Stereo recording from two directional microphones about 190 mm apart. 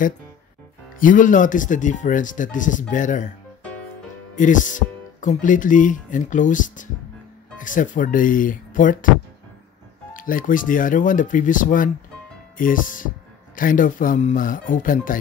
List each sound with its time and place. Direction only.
0.9 s speech: 45° left (ahead or behind)
4.4 s speech: 40° left (ahead or behind)
10.1 s speech: 45° left (ahead or behind)